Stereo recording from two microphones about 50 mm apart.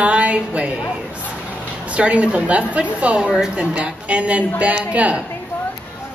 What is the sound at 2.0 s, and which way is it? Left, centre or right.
A woman's voice, right.